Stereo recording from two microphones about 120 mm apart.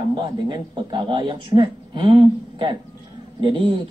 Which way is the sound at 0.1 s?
40° right (ahead or behind).